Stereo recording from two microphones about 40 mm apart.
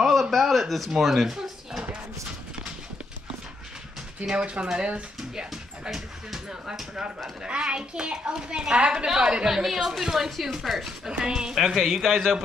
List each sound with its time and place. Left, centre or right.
0.0 s a sound: centre
4.3 s a woman's voice: right
5.5 s dog: centre
7.4 s a woman's voice: right; by 10.9 s centre
11.1 s a woman's voice: centre
11.8 s a man's voice: centre